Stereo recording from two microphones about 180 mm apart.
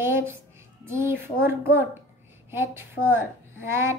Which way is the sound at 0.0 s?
15° right (ahead or behind).